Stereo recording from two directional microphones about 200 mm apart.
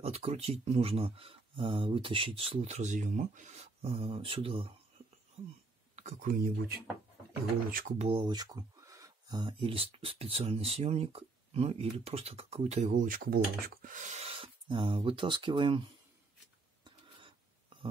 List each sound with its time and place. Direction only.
0.0 s speech: 30° right (ahead or behind)
5.9 s speech: 40° right (ahead or behind)
8.0 s speech: 25° right (ahead or behind)